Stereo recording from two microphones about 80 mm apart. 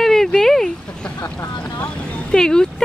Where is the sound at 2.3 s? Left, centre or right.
Centre.